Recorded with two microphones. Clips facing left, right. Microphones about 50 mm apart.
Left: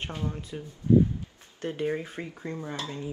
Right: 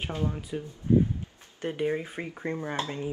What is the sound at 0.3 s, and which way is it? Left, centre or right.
Speech, centre.